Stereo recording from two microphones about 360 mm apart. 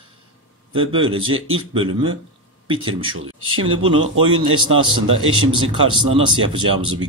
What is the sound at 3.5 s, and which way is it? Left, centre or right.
Speech, right.